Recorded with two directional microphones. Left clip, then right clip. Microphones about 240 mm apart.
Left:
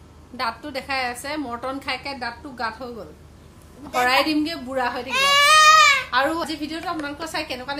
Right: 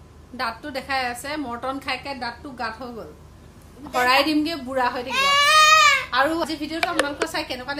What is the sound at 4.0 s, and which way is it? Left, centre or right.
A woman's voice, centre.